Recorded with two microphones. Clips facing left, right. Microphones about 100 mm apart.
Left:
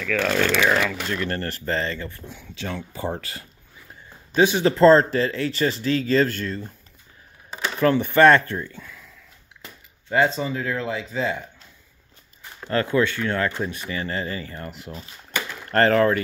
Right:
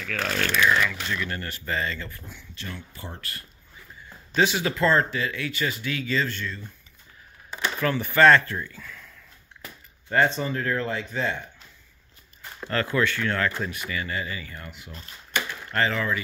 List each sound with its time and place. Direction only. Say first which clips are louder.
0.1 s speech: left 6 dB; 90° left
0.7 s speech: left 2 dB; 60° left (ahead or behind)
1.0 s speech: left 4 dB; 40° left (ahead or behind)
1.9 s speech: left 3 dB; 25° left (ahead or behind)
2.4 s speech: left 9 dB; 90° left
4.3 s speech: left 5 dB; 20° left (ahead or behind)
6.1 s speech: left 7 dB; 45° left (ahead or behind)
7.8 s speech: left 4 dB; 20° left (ahead or behind)
12.6 s speech: left 4 dB; 20° left (ahead or behind)
13.8 s speech: left 3 dB; 35° left (ahead or behind)
14.8 s speech: left 7 dB; 5° left (ahead or behind)
15.7 s speech: left 8 dB; 50° left (ahead or behind)